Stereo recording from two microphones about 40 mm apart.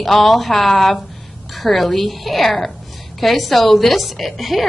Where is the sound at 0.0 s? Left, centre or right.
Centre.